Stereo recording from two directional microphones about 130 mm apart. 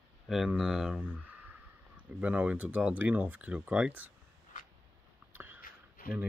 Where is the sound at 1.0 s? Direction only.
10° right (ahead or behind).